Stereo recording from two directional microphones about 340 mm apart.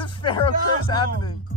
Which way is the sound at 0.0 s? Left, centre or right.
Centre.